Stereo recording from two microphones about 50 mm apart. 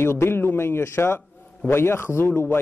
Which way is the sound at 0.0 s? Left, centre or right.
Left.